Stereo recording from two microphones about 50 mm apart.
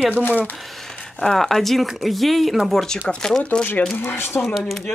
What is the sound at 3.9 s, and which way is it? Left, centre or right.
Speech, left.